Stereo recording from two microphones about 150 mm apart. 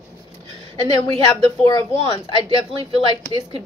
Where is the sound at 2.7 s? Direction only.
35° right (ahead or behind).